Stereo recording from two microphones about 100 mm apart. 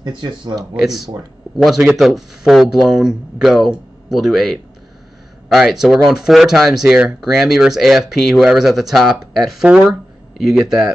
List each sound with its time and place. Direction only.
0.0 s speech: 50° right (ahead or behind)
0.6 s speech: 5° right (ahead or behind)